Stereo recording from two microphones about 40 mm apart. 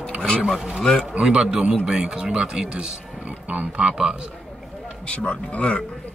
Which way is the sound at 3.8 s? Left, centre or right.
Centre.